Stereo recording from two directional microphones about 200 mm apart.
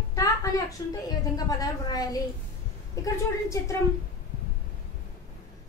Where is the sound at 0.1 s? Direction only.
15° left (ahead or behind).